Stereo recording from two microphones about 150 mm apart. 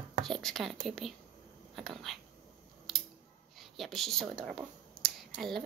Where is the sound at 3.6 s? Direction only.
Centre (ahead or behind).